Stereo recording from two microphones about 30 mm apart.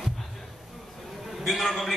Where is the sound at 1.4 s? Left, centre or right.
Centre.